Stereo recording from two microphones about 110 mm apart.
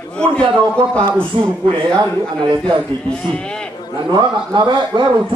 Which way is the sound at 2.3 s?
45° right (ahead or behind).